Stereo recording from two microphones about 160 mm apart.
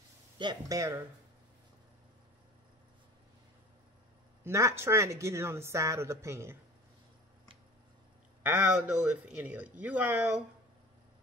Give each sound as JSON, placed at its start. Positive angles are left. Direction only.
{"t": 0.4, "sound": "speech", "side_deg": -25}
{"t": 4.5, "sound": "speech", "side_deg": -20}
{"t": 8.4, "sound": "speech", "side_deg": -10}